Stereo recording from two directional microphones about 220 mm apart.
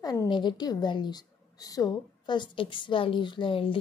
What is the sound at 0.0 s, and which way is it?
A woman's voice, 15° left (ahead or behind).